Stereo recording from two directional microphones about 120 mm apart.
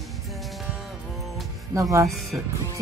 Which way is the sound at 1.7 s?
25° right (ahead or behind).